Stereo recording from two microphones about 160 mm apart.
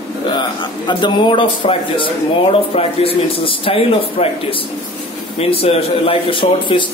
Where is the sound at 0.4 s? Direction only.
30° left (ahead or behind).